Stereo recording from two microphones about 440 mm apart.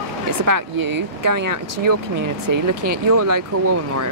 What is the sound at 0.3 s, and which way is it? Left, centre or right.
Speech, right.